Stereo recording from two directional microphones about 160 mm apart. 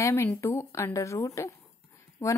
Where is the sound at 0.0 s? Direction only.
15° left (ahead or behind).